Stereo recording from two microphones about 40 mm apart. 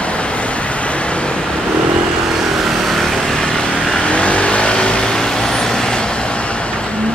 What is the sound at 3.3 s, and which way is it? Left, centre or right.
Vehicle, centre.